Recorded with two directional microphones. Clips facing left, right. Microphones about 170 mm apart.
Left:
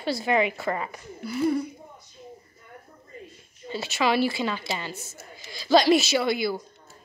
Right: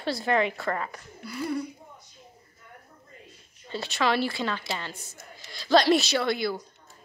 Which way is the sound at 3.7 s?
5° left (ahead or behind).